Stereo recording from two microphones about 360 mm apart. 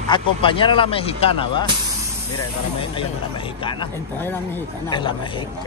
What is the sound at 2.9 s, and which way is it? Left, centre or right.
Speech, centre.